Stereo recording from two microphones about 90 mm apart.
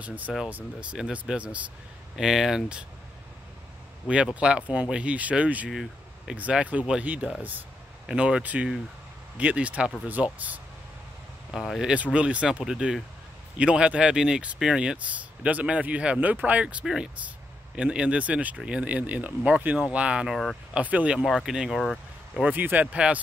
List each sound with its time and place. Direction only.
0.0 s speech: 15° right (ahead or behind)
4.1 s speech: 10° right (ahead or behind)
5.7 s vehicle: 5° right (ahead or behind)
6.3 s speech: 15° right (ahead or behind)
11.5 s speech: centre (ahead or behind)
11.9 s speech: 15° right (ahead or behind)
21.2 s speech: centre (ahead or behind)
22.4 s speech: 20° right (ahead or behind)